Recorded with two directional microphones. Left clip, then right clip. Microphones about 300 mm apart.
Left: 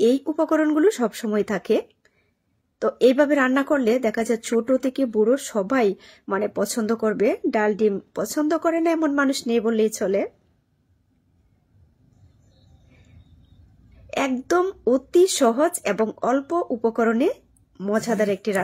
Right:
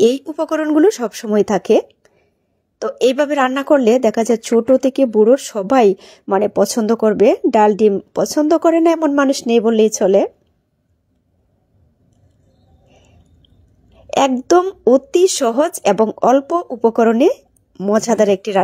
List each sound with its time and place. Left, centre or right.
0.2 s a woman's voice: centre
14.1 s a woman's voice: right